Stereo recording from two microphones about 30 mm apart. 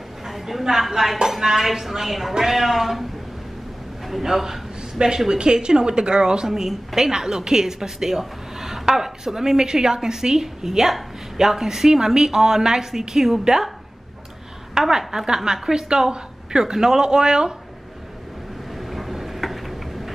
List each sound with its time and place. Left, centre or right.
0.3 s a sound: centre
0.8 s speech: centre
4.1 s speech: centre
4.9 s a woman's voice: right
6.5 s speech: centre
10.6 s speech: centre
14.7 s a woman's voice: centre
18.8 s a sound: centre